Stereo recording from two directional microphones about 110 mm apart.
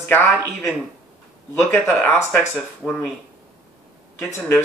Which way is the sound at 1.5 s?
20° left (ahead or behind).